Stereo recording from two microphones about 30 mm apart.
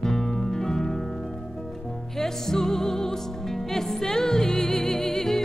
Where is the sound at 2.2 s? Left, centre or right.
Centre.